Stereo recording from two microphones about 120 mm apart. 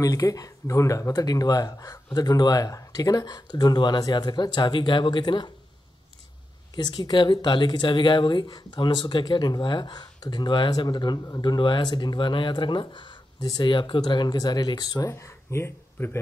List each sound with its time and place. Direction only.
0.0 s speech: 30° left (ahead or behind)
6.7 s speech: 35° left (ahead or behind); by 16.2 s 20° left (ahead or behind)